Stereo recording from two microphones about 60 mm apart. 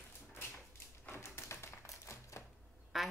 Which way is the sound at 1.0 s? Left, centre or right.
Left.